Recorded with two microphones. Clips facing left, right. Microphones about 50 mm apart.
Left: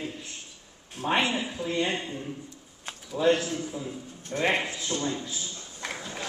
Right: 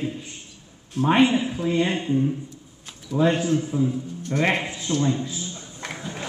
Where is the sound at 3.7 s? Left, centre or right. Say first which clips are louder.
Right 12 dB; right.